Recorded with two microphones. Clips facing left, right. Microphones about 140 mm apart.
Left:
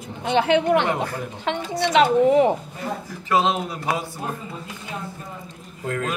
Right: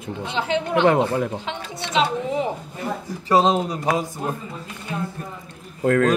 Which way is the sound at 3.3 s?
35° right (ahead or behind).